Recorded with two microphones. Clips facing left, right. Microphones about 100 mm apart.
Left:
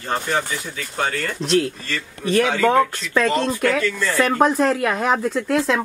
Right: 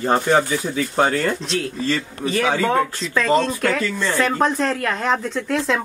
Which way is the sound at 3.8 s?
30° right (ahead or behind).